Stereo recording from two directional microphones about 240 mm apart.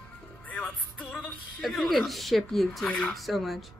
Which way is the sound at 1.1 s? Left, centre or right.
Centre.